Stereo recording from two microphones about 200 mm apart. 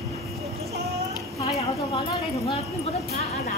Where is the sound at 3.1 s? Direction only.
30° left (ahead or behind).